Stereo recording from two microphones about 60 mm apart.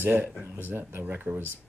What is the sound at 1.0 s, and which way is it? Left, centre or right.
Speech, right.